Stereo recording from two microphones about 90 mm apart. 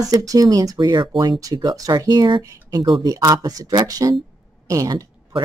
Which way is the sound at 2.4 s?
35° right (ahead or behind).